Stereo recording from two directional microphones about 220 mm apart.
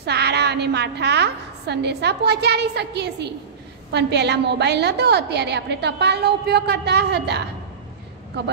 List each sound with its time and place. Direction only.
0.0 s a woman's voice: 50° right (ahead or behind)